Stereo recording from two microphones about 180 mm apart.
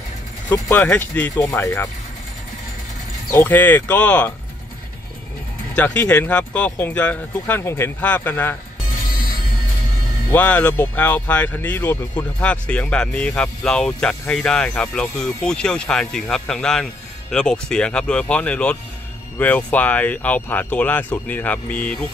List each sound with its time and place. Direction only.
0.5 s speech: 10° left (ahead or behind)
3.3 s speech: 15° left (ahead or behind)
5.8 s speech: 5° left (ahead or behind)
10.3 s speech: 10° left (ahead or behind)